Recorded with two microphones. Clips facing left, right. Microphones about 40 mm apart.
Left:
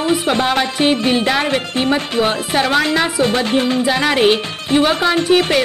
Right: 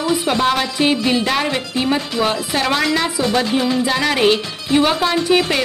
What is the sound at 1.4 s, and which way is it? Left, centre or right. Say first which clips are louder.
Speech: left 2 dB; left.